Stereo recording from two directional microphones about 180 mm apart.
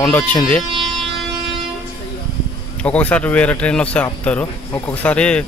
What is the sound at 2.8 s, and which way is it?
A man's voice, 5° left (ahead or behind).